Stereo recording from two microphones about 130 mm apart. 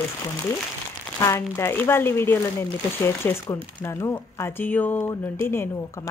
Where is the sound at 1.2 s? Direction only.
20° left (ahead or behind).